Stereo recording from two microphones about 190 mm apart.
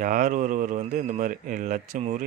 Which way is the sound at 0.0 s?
45° right (ahead or behind).